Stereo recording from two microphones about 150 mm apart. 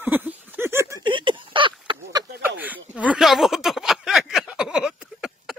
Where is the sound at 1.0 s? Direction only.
35° right (ahead or behind).